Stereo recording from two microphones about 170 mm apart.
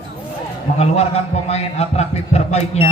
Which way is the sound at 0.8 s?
40° left (ahead or behind).